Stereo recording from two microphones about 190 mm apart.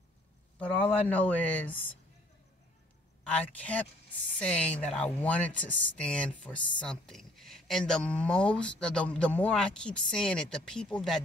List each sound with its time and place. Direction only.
1.0 s speech: 10° left (ahead or behind)
3.3 s speech: 5° left (ahead or behind)